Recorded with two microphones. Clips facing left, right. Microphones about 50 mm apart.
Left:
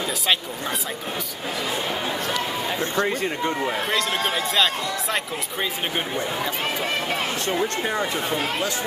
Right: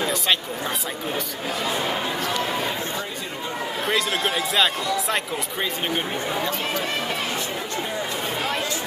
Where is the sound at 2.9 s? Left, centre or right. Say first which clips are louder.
Left 7 dB; left.